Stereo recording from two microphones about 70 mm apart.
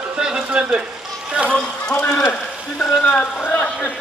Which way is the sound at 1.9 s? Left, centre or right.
Centre.